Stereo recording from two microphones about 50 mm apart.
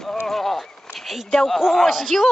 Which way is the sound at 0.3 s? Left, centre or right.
Centre.